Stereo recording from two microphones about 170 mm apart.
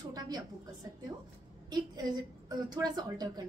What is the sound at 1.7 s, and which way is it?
A woman's voice, 25° right (ahead or behind).